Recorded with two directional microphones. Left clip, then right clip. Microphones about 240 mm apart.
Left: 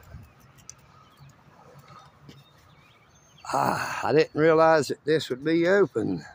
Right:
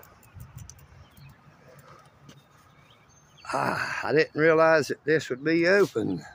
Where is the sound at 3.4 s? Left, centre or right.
Centre.